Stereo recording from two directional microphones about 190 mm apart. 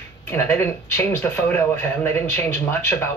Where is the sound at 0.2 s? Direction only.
10° left (ahead or behind).